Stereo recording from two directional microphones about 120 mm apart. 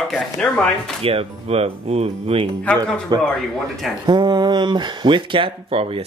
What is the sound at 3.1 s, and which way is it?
Speech, 35° right (ahead or behind).